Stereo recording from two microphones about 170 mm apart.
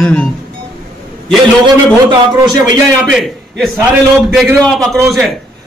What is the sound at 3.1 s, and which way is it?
A man's voice, centre (ahead or behind).